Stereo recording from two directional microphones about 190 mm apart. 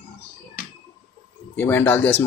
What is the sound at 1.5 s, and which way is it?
Speech, 10° left (ahead or behind).